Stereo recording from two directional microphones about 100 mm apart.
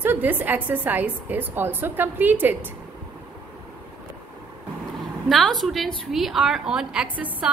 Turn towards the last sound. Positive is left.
turn(degrees=-15)  # may be behind; listen again after turning